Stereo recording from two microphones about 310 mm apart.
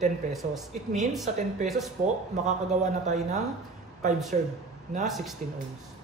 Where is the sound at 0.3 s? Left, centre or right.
Centre.